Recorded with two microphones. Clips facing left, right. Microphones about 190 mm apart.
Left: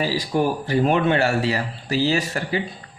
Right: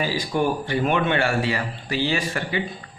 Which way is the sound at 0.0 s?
35° left (ahead or behind).